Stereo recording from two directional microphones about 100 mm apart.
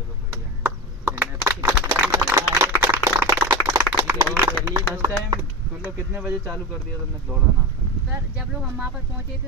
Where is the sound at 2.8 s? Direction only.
25° right (ahead or behind).